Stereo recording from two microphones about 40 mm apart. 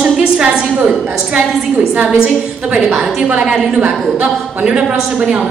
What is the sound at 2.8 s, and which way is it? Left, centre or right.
Speech, centre.